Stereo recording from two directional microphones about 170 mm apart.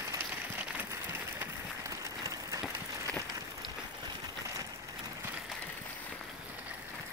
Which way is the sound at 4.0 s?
20° right (ahead or behind).